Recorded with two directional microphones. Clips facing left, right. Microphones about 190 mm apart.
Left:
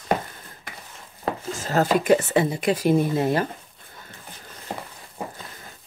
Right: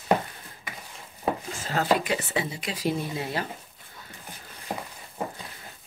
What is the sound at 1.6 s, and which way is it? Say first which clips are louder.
Speech: left 5 dB; 45° left (ahead or behind).